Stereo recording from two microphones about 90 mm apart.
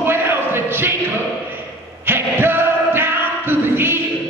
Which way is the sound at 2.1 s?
25° right (ahead or behind).